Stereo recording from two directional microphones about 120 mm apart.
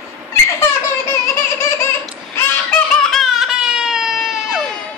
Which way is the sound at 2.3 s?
10° left (ahead or behind).